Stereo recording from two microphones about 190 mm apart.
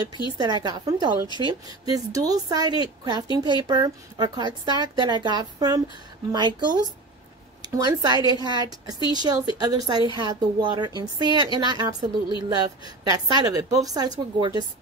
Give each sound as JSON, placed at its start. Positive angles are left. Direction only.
{"t": 0.4, "sound": "a woman's voice", "side_deg": -20}